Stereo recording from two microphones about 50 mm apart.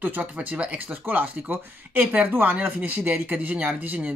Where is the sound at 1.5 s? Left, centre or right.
Right.